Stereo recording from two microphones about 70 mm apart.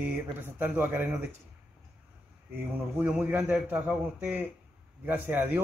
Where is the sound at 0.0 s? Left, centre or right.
Right.